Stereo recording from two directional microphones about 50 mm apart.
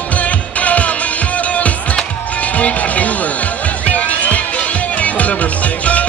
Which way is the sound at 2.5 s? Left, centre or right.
Left.